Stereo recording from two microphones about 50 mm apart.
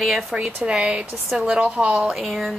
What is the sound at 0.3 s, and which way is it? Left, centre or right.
Speech, centre.